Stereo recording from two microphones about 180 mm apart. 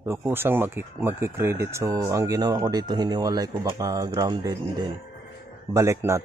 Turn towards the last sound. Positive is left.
turn(degrees=-15)  # may be behind; listen again after turning